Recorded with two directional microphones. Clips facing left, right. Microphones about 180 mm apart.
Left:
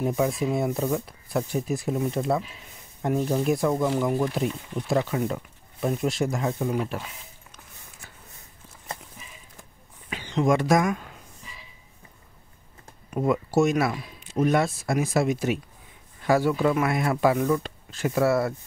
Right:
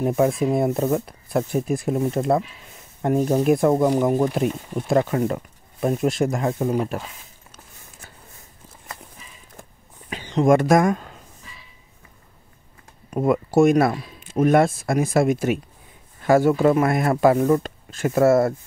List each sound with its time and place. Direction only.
0.0 s speech: 50° right (ahead or behind)
6.7 s speech: 40° right (ahead or behind)
10.0 s a sound: 40° right (ahead or behind)
13.1 s speech: 50° right (ahead or behind)